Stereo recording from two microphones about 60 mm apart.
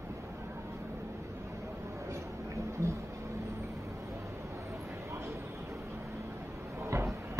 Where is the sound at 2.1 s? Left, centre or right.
Right.